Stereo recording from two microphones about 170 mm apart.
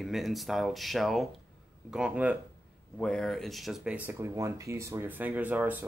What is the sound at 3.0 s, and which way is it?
Speech, 5° left (ahead or behind).